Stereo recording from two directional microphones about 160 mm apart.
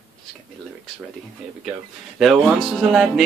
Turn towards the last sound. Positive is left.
turn(degrees=0)  # may be behind; listen again after turning